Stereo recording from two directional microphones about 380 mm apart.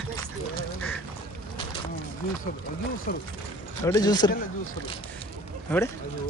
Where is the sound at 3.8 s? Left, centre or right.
Centre.